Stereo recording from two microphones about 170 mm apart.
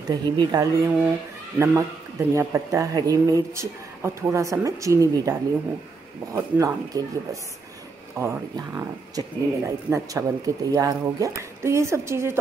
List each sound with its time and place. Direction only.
0.1 s a woman's voice: 20° right (ahead or behind)
8.2 s speech: 15° right (ahead or behind)